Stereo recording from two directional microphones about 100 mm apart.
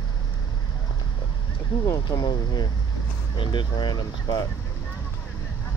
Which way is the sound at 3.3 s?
55° left (ahead or behind).